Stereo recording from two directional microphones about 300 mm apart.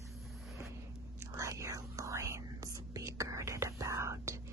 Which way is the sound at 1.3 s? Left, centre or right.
Centre.